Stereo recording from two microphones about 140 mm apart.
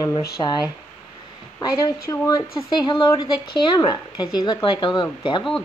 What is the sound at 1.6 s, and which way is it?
A woman's voice, 25° left (ahead or behind).